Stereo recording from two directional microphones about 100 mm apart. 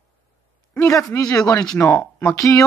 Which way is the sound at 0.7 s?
25° left (ahead or behind).